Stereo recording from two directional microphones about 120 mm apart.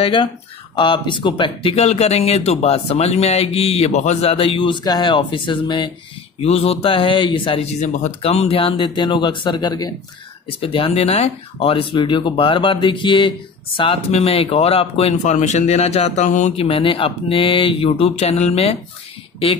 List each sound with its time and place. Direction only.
0.0 s speech: 45° left (ahead or behind)
6.4 s speech: 55° left (ahead or behind)
7.6 s speech: 65° left (ahead or behind); by 9.9 s 35° left (ahead or behind)
10.6 s speech: 50° left (ahead or behind)
14.1 s speech: 55° left (ahead or behind)
15.3 s speech: 75° left (ahead or behind)
16.5 s speech: 50° left (ahead or behind)